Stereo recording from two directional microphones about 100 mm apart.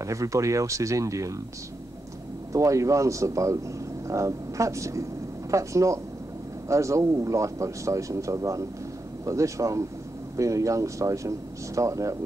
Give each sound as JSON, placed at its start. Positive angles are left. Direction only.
{"t": 0.0, "sound": "speech", "side_deg": -30}
{"t": 2.5, "sound": "speech", "side_deg": -30}